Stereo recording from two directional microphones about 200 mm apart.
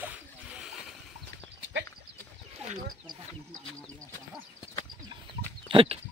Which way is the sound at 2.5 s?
35° right (ahead or behind).